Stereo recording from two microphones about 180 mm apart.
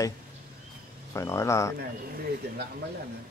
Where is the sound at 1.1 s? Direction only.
15° left (ahead or behind).